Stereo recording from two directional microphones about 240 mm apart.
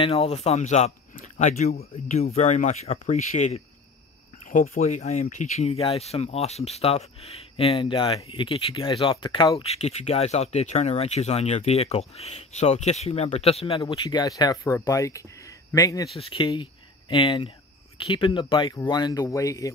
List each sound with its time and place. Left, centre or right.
0.0 s speech: left